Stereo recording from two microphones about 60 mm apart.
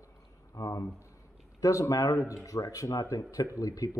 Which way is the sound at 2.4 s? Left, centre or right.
Left.